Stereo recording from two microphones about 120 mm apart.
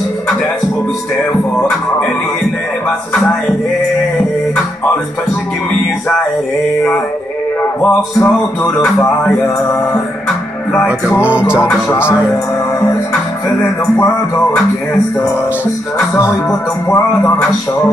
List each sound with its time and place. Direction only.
7.8 s speech: 15° left (ahead or behind)
8.7 s music: 25° left (ahead or behind)
10.9 s music: 10° right (ahead or behind)
11.6 s speech: 20° left (ahead or behind)
16.9 s speech: 15° left (ahead or behind)